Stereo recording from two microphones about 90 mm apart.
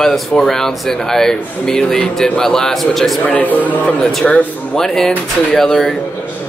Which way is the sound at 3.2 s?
15° left (ahead or behind).